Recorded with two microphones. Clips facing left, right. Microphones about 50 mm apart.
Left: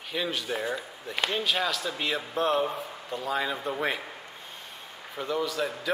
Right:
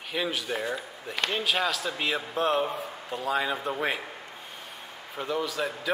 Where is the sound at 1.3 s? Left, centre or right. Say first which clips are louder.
Right 1 dB; centre.